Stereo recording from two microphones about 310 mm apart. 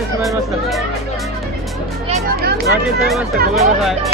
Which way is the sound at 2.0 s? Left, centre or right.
Right.